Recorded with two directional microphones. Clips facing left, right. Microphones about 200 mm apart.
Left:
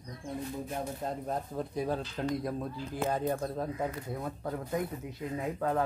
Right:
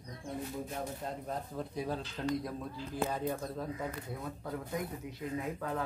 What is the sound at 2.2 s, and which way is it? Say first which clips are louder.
Speech: left 3 dB; 55° left (ahead or behind).